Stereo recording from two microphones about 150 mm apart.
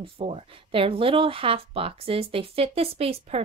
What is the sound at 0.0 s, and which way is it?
A woman's voice, 40° right (ahead or behind).